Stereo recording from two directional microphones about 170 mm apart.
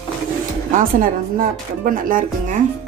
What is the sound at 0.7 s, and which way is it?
Speech, 55° right (ahead or behind).